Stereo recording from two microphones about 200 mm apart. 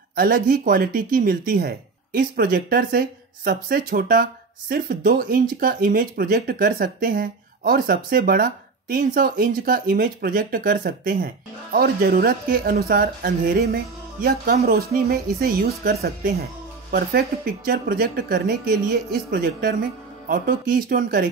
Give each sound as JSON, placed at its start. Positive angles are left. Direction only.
{"t": 0.1, "sound": "speech", "side_deg": -45}